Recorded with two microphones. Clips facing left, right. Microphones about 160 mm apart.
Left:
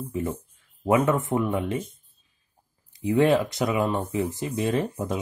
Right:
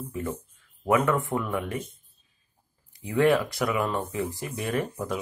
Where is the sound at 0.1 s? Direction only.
25° left (ahead or behind).